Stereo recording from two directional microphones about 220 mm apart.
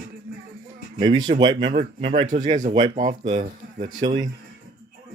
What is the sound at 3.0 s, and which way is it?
Speech, 25° right (ahead or behind).